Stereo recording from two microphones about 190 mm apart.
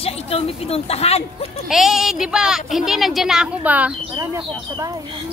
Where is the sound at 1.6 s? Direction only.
Centre (ahead or behind).